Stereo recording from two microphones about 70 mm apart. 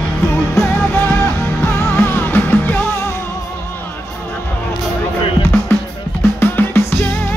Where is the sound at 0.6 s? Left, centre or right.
Left.